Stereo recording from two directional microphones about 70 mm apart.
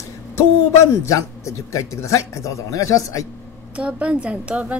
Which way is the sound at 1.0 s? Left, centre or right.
Left.